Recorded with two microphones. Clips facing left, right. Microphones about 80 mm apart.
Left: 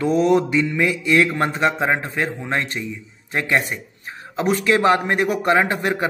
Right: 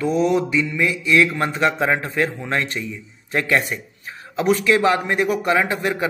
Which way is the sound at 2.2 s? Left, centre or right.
Centre.